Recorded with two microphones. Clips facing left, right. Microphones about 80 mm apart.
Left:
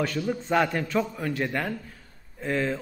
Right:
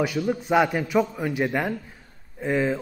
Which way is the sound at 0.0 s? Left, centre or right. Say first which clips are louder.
Right 3 dB; centre.